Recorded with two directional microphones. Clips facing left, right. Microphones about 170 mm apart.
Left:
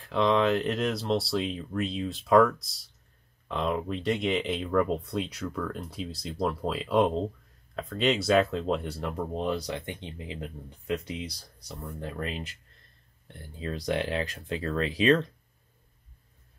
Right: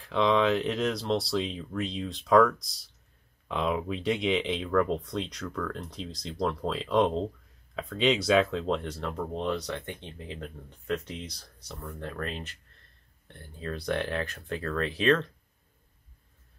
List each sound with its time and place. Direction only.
0.0 s speech: centre (ahead or behind)